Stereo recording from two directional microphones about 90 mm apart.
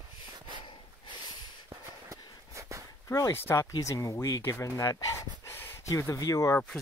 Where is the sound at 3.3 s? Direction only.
25° left (ahead or behind).